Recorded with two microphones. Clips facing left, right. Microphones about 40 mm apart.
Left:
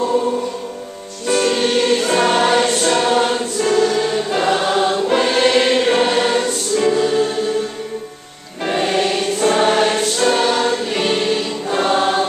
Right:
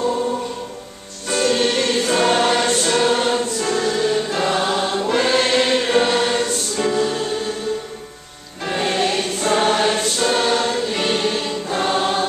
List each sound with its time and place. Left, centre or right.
1.3 s music: centre
5.0 s choir: centre
8.6 s music: centre
9.4 s choir: centre